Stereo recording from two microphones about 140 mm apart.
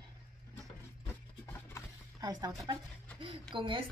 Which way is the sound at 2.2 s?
30° right (ahead or behind).